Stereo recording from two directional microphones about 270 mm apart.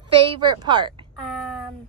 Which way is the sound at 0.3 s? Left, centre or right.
Centre.